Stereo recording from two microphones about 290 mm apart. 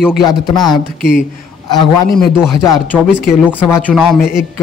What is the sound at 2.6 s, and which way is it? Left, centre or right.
Speech, centre.